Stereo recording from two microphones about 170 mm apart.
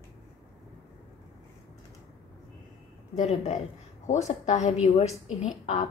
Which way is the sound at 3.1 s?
40° left (ahead or behind).